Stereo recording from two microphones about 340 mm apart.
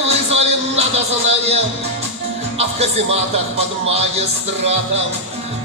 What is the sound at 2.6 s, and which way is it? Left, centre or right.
A man's voice, centre.